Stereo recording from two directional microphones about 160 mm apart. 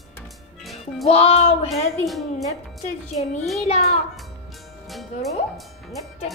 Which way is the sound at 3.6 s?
40° left (ahead or behind).